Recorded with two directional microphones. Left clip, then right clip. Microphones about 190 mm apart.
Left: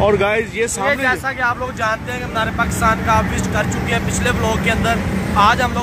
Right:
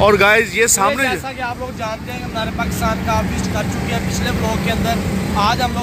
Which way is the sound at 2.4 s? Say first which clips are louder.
Left 3 dB; 15° left (ahead or behind).